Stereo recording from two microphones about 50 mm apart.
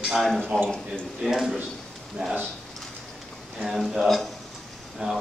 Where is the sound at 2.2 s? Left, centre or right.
Centre.